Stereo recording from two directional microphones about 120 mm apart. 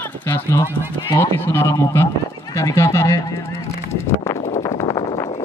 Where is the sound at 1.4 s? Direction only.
25° left (ahead or behind).